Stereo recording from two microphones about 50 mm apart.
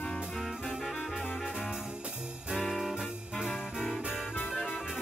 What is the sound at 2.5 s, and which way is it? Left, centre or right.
Music, centre.